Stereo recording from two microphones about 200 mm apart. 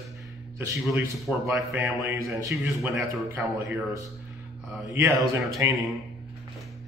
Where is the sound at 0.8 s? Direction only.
Centre (ahead or behind).